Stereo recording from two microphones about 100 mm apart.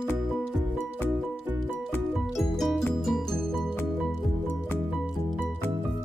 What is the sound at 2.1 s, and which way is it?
Music, centre (ahead or behind).